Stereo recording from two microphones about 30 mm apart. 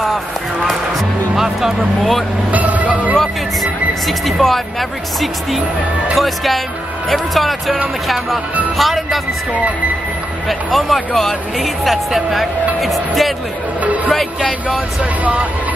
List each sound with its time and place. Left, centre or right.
1.3 s speech: centre
2.5 s music: right
4.4 s speech: centre
6.1 s speech: centre
10.7 s speech: centre